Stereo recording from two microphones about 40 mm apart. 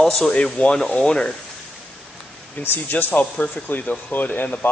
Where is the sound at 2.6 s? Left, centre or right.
Left.